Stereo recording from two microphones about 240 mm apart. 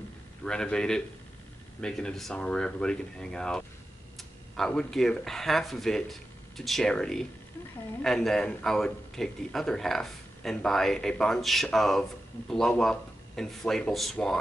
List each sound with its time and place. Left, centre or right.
0.4 s speech: centre